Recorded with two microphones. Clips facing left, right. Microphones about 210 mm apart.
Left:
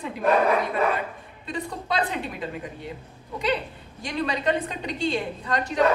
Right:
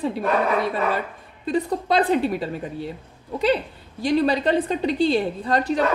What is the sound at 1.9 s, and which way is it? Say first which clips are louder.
Speech: right 8 dB; 40° right (ahead or behind).